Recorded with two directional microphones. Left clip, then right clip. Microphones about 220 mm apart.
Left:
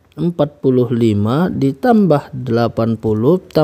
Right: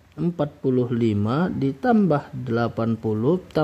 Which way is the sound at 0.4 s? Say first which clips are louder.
Left 9 dB; 30° left (ahead or behind).